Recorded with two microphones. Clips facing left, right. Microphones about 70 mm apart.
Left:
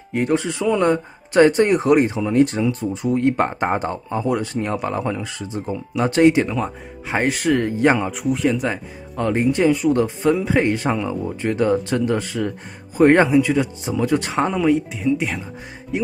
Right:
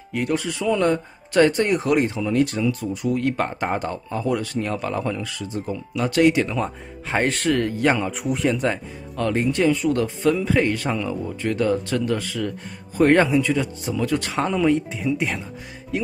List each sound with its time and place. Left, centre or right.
0.1 s speech: left
6.5 s speech: centre
7.5 s speech: centre
8.1 s speech: centre
9.1 s speech: centre
13.8 s speech: left
14.5 s speech: centre